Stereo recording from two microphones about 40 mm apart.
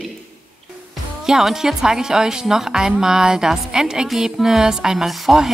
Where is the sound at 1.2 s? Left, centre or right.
Centre.